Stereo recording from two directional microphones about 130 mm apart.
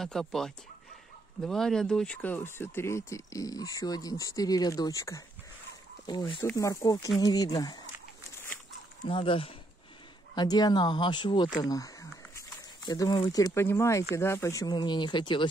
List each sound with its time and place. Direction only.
0.0 s speech: 5° left (ahead or behind); by 5.2 s 25° left (ahead or behind)
6.0 s speech: 35° left (ahead or behind)
6.4 s speech: 25° left (ahead or behind)
9.0 s speech: 45° left (ahead or behind)
10.3 s speech: 30° left (ahead or behind)
11.6 s a sound: 25° left (ahead or behind)
13.7 s speech: 20° left (ahead or behind); by 15.4 s 35° left (ahead or behind)